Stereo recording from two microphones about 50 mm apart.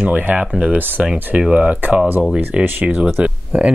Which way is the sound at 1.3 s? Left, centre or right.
Right.